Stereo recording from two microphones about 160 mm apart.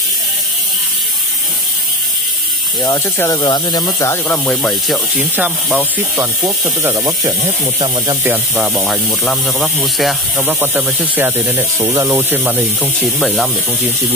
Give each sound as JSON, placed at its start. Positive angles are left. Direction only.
{"t": 2.8, "sound": "speech", "side_deg": 20}
{"t": 4.1, "sound": "speech", "side_deg": 10}
{"t": 8.2, "sound": "speech", "side_deg": -10}
{"t": 8.7, "sound": "speech", "side_deg": 0}
{"t": 10.3, "sound": "speech", "side_deg": -10}